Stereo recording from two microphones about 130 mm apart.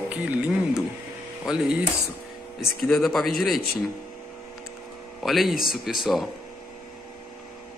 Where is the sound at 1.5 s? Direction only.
5° right (ahead or behind).